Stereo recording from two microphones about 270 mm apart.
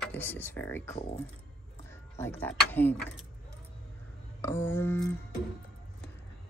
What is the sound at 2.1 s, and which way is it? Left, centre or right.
Speech, centre.